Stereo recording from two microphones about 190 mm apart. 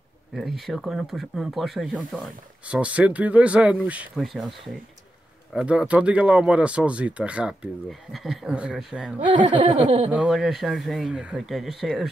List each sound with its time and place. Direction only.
0.3 s speech: centre (ahead or behind)
9.2 s speech: 25° right (ahead or behind)
10.1 s speech: 5° right (ahead or behind)